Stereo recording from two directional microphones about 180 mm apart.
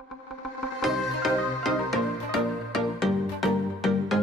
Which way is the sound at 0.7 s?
Centre (ahead or behind).